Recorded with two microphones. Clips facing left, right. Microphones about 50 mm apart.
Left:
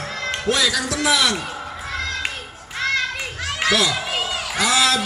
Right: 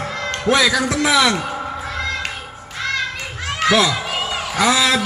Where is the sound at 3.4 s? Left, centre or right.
Right.